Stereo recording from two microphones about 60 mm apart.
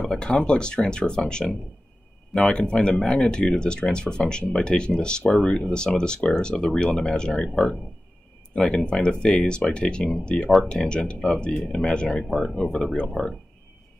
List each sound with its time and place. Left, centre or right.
0.0 s speech: centre